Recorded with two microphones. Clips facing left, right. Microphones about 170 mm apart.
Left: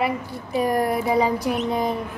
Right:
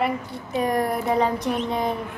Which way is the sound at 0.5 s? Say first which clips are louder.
Left 2 dB; 5° left (ahead or behind).